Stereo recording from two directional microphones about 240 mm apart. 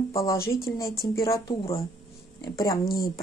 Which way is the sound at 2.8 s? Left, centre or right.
Left.